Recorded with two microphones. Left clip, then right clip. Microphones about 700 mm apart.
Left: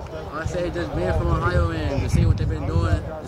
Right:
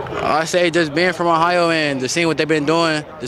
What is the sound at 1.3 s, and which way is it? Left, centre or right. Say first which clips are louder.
Speech: right 10 dB; right.